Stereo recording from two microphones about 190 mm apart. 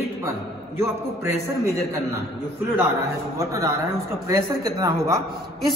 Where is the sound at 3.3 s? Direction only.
15° right (ahead or behind).